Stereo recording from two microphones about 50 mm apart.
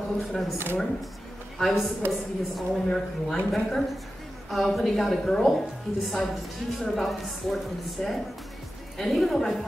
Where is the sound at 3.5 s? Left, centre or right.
Centre.